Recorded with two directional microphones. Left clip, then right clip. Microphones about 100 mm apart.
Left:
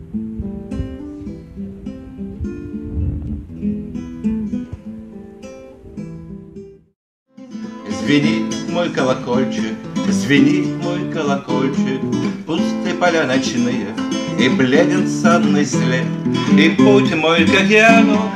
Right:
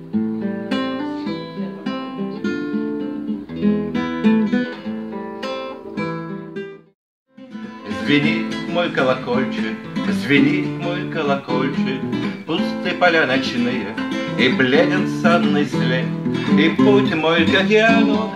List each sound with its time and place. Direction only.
3.9 s music: 40° right (ahead or behind)
7.9 s speech: 35° left (ahead or behind)
10.5 s music: 35° left (ahead or behind)